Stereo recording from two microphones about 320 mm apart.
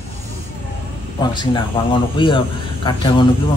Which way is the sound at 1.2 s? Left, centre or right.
Centre.